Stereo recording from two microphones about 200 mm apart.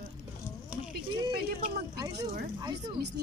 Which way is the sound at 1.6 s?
20° right (ahead or behind).